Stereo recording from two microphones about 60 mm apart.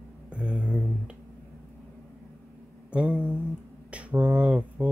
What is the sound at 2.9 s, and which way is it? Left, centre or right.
Speech, centre.